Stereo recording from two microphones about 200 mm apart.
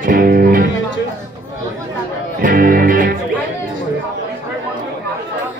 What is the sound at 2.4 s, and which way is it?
Music, 45° right (ahead or behind).